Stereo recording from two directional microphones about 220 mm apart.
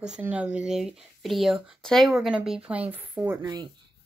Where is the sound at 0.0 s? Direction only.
5° right (ahead or behind).